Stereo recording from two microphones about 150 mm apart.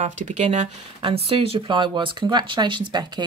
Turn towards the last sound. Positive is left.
turn(degrees=-30)  # may be behind; listen again after turning